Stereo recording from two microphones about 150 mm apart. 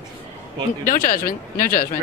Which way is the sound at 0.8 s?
70° left (ahead or behind).